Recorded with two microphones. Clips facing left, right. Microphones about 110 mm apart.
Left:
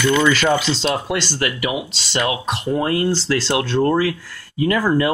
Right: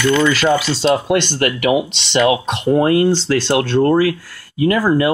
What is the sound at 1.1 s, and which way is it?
Speech, 55° right (ahead or behind).